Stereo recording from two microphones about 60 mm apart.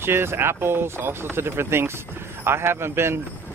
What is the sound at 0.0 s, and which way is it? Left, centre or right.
A man's voice, right.